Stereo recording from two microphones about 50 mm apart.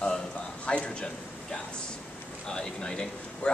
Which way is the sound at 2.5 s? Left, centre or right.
Centre.